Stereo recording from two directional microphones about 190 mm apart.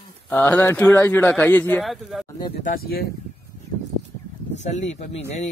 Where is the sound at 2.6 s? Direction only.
55° left (ahead or behind).